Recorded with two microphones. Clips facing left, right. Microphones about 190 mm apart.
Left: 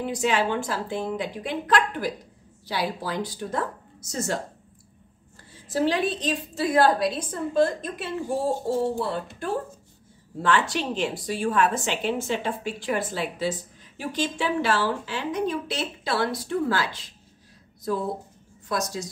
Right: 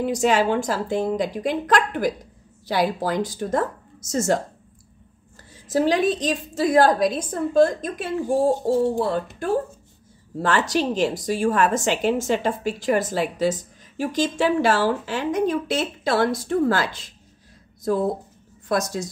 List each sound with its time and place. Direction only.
0.0 s a woman's voice: 45° right (ahead or behind)
5.7 s a woman's voice: 45° right (ahead or behind)
18.7 s a woman's voice: 50° right (ahead or behind)